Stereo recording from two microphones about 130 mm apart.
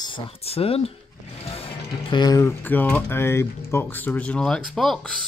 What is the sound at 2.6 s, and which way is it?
Speech, 15° left (ahead or behind).